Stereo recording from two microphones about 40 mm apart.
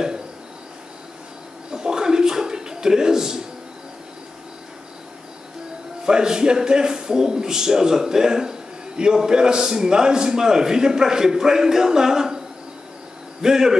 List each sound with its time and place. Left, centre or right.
1.7 s a sound: centre
6.0 s a man's voice: centre
13.4 s a man's voice: centre